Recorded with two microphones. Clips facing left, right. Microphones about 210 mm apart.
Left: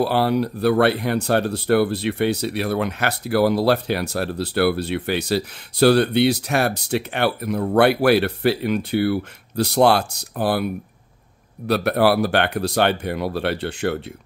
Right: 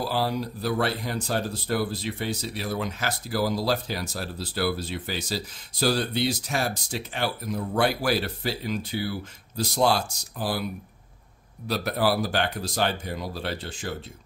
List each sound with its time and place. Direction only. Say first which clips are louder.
0.0 s speech: left 8 dB; 65° left (ahead or behind)